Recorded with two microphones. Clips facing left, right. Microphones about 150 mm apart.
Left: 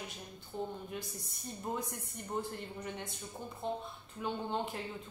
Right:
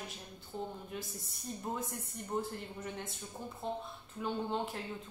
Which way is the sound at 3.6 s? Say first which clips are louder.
Left 2 dB; centre (ahead or behind).